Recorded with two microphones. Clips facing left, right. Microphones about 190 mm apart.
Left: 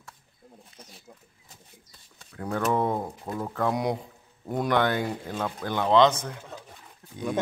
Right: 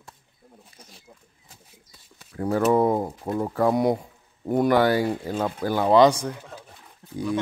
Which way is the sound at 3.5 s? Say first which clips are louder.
Right 6 dB; 5° right (ahead or behind).